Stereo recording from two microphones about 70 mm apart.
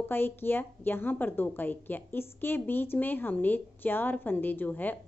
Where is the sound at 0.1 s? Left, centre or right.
Left.